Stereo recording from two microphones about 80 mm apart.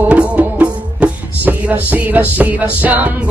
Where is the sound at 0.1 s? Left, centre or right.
Centre.